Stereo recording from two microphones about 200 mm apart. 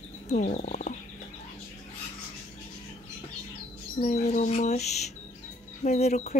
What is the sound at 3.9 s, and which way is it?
Speech, 35° left (ahead or behind).